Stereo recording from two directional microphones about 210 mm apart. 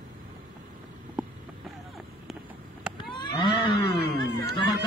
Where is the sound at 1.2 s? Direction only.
5° right (ahead or behind).